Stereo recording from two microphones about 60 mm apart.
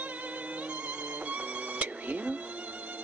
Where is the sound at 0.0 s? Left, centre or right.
Right.